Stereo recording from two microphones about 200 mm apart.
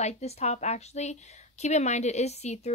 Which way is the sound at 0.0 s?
35° left (ahead or behind).